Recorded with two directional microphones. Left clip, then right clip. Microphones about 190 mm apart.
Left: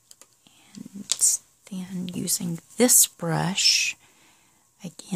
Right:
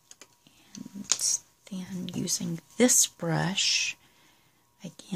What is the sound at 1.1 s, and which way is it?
Speech, 40° left (ahead or behind).